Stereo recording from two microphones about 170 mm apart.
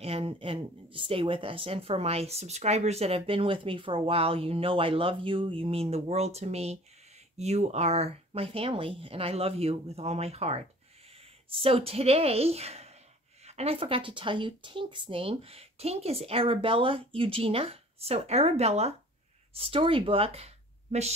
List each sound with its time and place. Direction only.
0.0 s speech: 35° right (ahead or behind)